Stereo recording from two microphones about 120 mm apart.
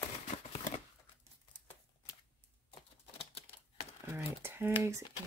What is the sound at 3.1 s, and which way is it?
Typewriter, 55° left (ahead or behind).